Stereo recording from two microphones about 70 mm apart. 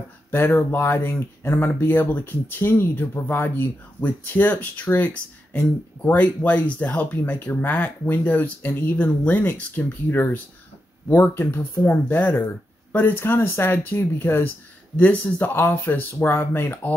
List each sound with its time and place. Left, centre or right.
0.3 s speech: left